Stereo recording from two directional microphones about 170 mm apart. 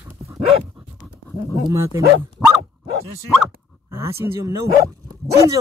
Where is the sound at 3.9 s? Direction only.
15° right (ahead or behind).